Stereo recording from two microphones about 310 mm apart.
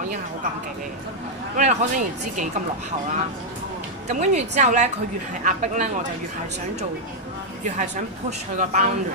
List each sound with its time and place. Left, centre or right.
1.6 s a woman's voice: right
4.1 s a woman's voice: right
7.7 s a woman's voice: right